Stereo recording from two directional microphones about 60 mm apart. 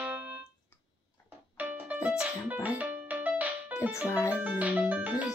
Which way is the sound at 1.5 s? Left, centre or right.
Right.